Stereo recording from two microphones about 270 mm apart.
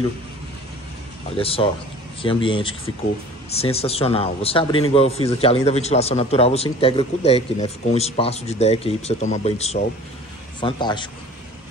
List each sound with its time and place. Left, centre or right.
1.3 s a man's voice: left